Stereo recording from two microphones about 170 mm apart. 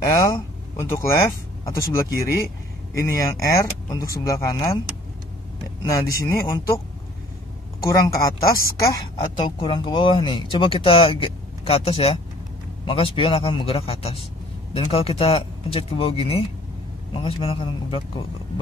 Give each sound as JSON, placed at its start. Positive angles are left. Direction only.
{"t": 0.3, "sound": "speech", "side_deg": 15}
{"t": 5.8, "sound": "speech", "side_deg": 20}
{"t": 7.8, "sound": "speech", "side_deg": 20}